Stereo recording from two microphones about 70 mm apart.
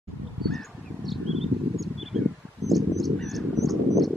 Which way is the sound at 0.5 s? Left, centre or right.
Centre.